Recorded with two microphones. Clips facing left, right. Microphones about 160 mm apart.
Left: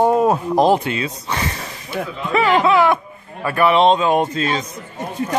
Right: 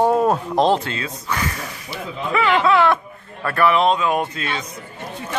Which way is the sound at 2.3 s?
40° left (ahead or behind).